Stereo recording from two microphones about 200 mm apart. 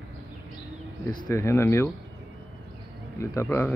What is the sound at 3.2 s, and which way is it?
Speech, 15° left (ahead or behind).